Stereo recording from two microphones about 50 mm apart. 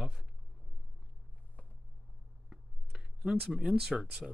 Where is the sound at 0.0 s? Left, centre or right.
Centre.